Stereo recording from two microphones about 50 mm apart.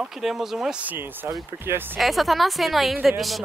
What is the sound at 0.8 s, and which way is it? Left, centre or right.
Speech, right.